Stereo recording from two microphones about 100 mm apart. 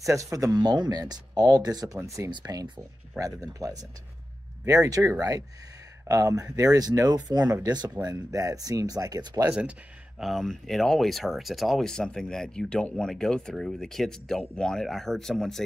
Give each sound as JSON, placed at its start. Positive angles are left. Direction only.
{"t": 0.1, "sound": "speech", "side_deg": -35}
{"t": 9.4, "sound": "speech", "side_deg": -15}
{"t": 10.2, "sound": "speech", "side_deg": 0}